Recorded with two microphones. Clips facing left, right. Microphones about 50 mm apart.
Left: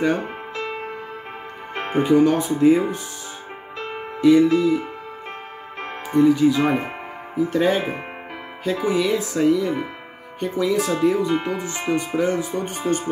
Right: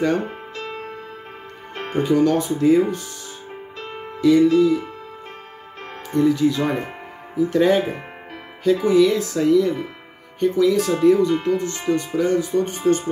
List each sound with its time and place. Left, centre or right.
0.0 s music: centre
1.9 s speech: centre
6.1 s speech: centre